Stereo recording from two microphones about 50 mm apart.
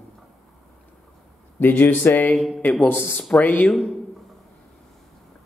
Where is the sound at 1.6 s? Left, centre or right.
Left.